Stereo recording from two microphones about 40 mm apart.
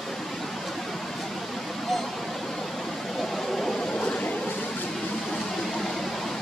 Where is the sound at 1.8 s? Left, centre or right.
Centre.